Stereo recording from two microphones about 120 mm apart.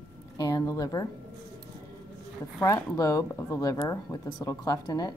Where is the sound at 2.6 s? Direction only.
30° left (ahead or behind).